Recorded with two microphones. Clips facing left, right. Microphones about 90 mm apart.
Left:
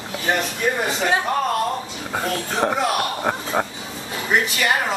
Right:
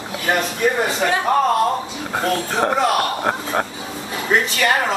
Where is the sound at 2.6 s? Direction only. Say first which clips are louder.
Right 3 dB; centre (ahead or behind).